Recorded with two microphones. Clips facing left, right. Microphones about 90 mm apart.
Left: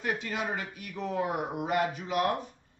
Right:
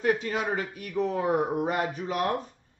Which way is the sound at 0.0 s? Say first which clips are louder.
Right 6 dB; 40° right (ahead or behind).